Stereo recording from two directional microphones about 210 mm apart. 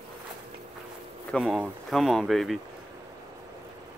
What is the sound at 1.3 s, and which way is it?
Speech, centre (ahead or behind).